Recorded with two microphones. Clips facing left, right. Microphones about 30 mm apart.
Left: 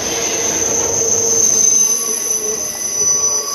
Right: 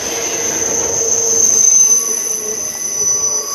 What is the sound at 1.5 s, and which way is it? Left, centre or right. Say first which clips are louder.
Train wheels squealing: right 2 dB; left.